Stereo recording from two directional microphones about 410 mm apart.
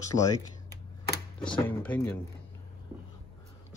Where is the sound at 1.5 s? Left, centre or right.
Centre.